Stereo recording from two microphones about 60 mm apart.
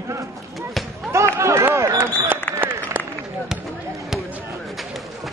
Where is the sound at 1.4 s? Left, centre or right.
Right.